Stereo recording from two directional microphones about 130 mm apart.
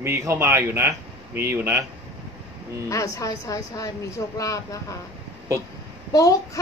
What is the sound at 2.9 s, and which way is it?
A child's voice, 25° left (ahead or behind).